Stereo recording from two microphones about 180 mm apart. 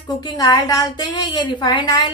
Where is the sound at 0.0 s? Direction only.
25° left (ahead or behind).